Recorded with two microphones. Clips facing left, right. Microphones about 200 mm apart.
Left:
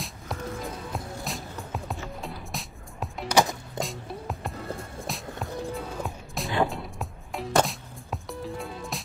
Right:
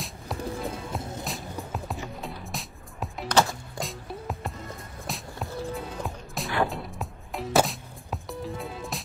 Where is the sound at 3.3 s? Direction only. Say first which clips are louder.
Left 1 dB; 15° left (ahead or behind).